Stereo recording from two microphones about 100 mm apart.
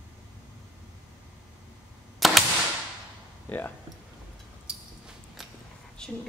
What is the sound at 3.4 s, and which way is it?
Speech, 20° left (ahead or behind).